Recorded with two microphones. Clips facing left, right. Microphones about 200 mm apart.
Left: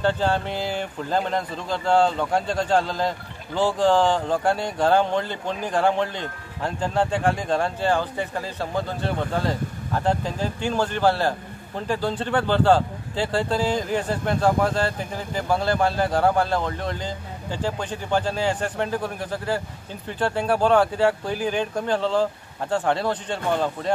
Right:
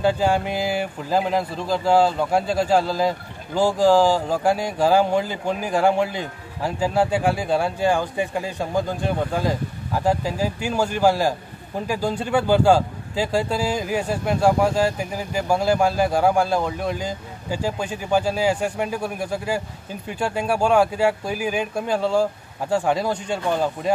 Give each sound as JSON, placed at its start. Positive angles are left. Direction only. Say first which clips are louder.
{"t": 0.0, "sound": "speech", "louder": "right 3 dB", "side_deg": -10}